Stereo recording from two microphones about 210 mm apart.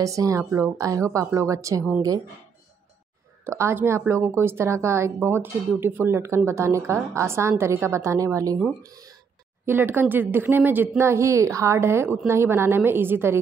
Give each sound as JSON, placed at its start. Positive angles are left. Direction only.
{"t": 0.0, "sound": "a woman's voice", "side_deg": -15}
{"t": 3.4, "sound": "a woman's voice", "side_deg": -10}
{"t": 8.9, "sound": "a sound", "side_deg": -15}
{"t": 9.7, "sound": "a woman's voice", "side_deg": -10}